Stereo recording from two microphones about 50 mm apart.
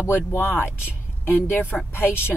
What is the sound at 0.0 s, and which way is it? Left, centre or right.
Speech, left.